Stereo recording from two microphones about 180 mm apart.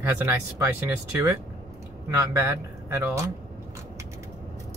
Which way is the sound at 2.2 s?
15° right (ahead or behind).